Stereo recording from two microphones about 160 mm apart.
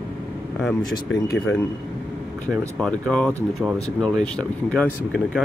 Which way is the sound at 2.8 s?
5° left (ahead or behind).